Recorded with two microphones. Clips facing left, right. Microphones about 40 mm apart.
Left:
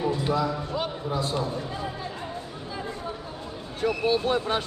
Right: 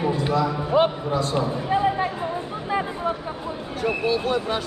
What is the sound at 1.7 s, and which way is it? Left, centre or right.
Basketball bounce, right.